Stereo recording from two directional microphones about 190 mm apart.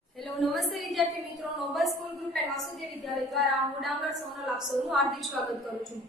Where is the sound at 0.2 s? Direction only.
Centre (ahead or behind).